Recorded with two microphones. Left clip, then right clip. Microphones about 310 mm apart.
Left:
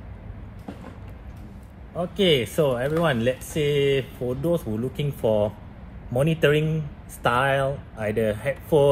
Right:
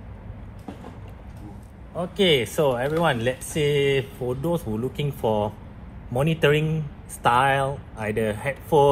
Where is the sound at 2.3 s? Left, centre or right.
Centre.